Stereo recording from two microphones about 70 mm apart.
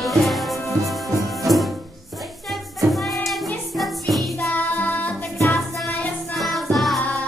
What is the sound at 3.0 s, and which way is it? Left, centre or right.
Music, centre.